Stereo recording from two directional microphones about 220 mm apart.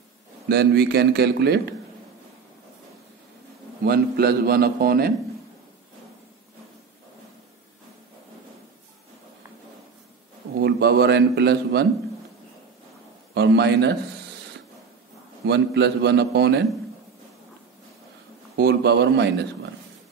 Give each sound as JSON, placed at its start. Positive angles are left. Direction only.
{"t": 0.5, "sound": "a man's voice", "side_deg": -45}
{"t": 3.8, "sound": "a man's voice", "side_deg": -45}
{"t": 10.6, "sound": "a man's voice", "side_deg": -50}
{"t": 13.3, "sound": "a man's voice", "side_deg": -50}
{"t": 15.4, "sound": "a man's voice", "side_deg": -50}
{"t": 18.6, "sound": "a man's voice", "side_deg": -50}